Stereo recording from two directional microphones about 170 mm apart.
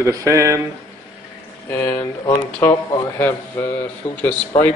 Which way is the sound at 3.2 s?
15° left (ahead or behind).